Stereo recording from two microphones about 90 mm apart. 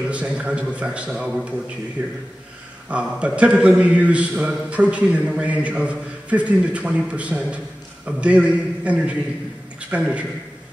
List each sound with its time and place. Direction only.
0.1 s a man's voice: 15° right (ahead or behind)